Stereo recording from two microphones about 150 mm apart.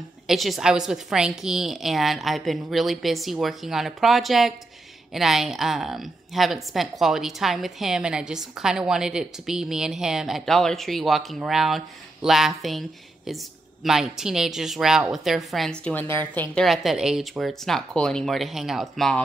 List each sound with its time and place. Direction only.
0.3 s a woman's voice: centre (ahead or behind)